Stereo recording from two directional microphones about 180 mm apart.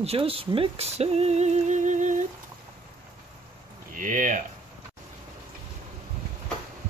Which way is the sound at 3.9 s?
50° right (ahead or behind).